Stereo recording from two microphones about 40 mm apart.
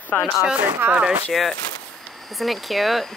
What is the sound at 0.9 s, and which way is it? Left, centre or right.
Speech, right.